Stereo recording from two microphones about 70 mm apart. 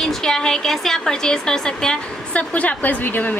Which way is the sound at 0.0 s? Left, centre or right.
Centre.